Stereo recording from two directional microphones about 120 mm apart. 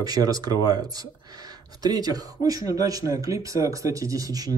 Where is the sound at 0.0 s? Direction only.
30° right (ahead or behind).